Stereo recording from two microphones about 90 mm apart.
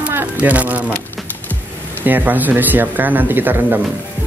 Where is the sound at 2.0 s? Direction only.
20° right (ahead or behind).